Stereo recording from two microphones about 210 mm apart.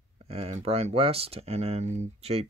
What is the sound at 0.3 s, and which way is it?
Speech, 30° right (ahead or behind).